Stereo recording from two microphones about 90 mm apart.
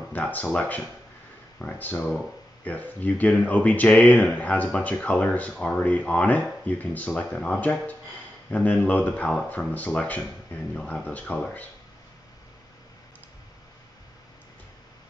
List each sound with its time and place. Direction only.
0.1 s speech: 15° left (ahead or behind)